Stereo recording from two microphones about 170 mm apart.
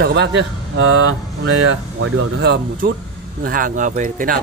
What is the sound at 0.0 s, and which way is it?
Speech, 75° right (ahead or behind).